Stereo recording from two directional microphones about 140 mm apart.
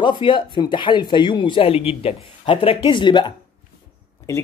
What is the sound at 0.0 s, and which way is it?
Speech, 35° left (ahead or behind).